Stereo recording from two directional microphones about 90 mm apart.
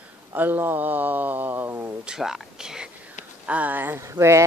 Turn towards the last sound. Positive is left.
turn(degrees=-30)  # may be behind; listen again after turning